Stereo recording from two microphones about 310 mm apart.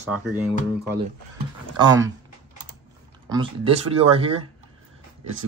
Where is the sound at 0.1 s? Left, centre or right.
Centre.